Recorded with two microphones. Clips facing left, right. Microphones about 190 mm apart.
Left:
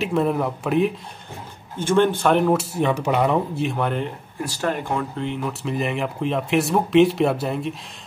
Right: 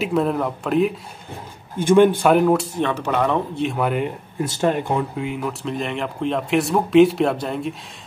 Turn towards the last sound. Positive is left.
turn(degrees=0)  # may be behind; listen again after turning